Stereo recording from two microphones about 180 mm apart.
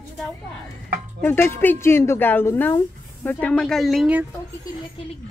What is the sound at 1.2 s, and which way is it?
A woman's voice, 10° left (ahead or behind).